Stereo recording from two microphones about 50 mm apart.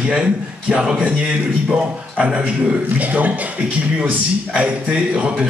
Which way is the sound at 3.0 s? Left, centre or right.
Right.